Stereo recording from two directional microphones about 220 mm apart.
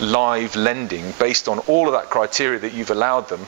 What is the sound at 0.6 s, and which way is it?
Speech, 15° right (ahead or behind).